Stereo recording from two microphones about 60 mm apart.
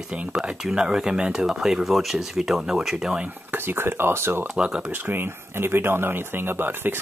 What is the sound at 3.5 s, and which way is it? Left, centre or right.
Speech, right.